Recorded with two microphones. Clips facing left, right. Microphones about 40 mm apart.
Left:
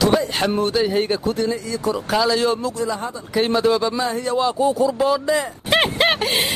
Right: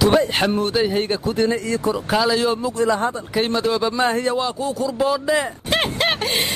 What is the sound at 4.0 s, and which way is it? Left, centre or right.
Speech, right.